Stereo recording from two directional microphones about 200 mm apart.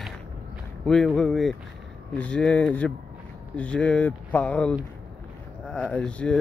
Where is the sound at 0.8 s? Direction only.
Centre (ahead or behind).